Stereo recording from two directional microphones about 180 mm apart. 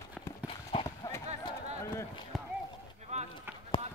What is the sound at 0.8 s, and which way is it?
Clip-clop, 15° left (ahead or behind).